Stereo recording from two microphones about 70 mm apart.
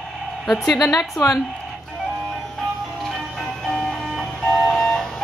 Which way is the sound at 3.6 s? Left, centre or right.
Centre.